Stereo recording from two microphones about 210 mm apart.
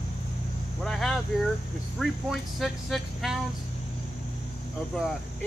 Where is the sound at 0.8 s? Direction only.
Centre (ahead or behind).